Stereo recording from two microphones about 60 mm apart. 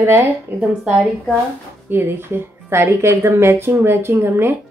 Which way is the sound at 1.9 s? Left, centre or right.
Right.